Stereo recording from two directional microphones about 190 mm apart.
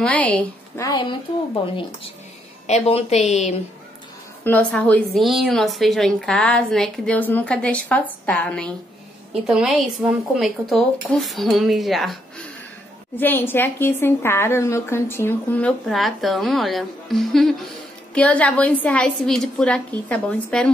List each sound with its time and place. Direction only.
0.0 s a woman's voice: 5° left (ahead or behind)
2.6 s a woman's voice: 35° left (ahead or behind)
4.5 s a woman's voice: 5° left (ahead or behind)
13.2 s a woman's voice: 10° left (ahead or behind)